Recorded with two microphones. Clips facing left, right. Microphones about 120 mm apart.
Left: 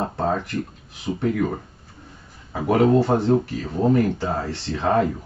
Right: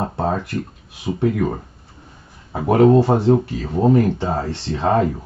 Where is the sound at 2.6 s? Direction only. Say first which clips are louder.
Right 4 dB; 20° right (ahead or behind).